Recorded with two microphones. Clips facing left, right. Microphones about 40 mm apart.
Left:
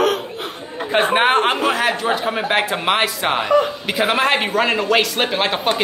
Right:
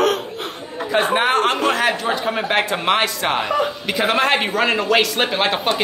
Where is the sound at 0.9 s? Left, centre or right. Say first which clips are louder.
Left 2 dB; left.